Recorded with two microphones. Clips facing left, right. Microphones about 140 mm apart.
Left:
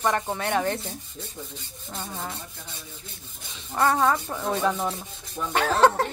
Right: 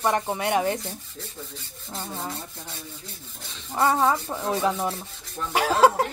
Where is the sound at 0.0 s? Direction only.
15° right (ahead or behind).